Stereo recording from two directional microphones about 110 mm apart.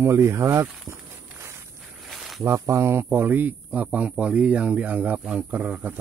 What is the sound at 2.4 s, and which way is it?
Speech, 25° right (ahead or behind).